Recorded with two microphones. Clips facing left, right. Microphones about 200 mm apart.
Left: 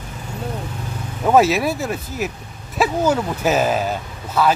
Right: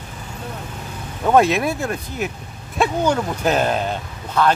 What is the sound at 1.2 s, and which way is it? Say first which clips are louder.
Speech: left 1 dB; 5° left (ahead or behind).